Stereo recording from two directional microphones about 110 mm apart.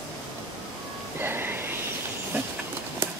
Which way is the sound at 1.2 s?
20° right (ahead or behind).